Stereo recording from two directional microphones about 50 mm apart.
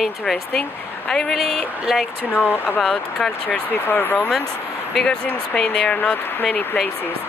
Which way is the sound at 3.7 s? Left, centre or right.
Left.